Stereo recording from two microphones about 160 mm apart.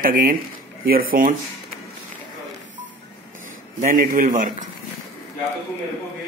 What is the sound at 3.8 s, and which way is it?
Speech, 60° right (ahead or behind).